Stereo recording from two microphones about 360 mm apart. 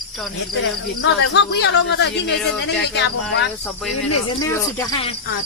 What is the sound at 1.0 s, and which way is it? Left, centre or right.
Speech, left.